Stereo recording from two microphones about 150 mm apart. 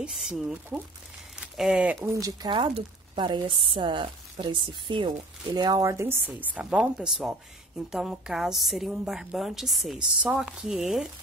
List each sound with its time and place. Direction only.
0.0 s a woman's voice: 5° right (ahead or behind)
2.0 s a woman's voice: 20° right (ahead or behind); by 11.1 s centre (ahead or behind)